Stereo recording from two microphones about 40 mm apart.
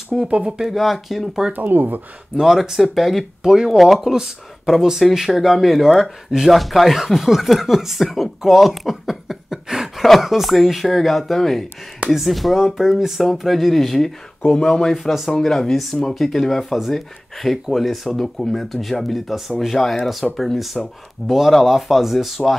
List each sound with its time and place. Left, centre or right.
0.3 s speech: right
0.6 s speech: centre
1.5 s speech: right
2.3 s speech: centre
5.1 s speech: centre
14.5 s speech: centre
15.0 s speech: centre